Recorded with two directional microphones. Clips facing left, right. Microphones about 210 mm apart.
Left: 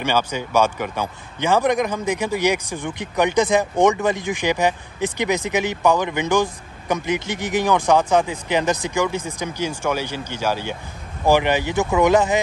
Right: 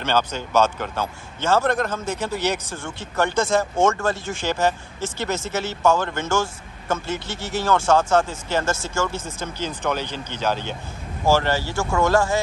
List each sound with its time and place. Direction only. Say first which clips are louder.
0.0 s speech: left 1 dB; 10° left (ahead or behind)